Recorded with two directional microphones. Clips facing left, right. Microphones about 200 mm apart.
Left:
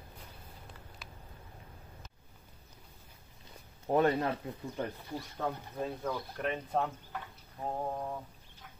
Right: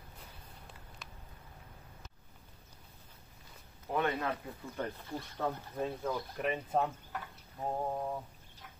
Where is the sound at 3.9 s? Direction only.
35° left (ahead or behind).